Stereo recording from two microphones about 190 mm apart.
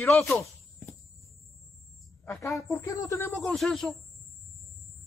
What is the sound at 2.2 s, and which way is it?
Speech, 15° left (ahead or behind).